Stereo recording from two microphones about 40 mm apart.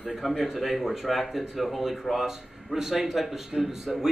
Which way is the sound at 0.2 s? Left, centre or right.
Centre.